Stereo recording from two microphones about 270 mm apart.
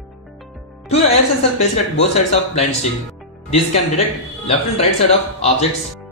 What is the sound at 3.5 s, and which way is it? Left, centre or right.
Speech, left.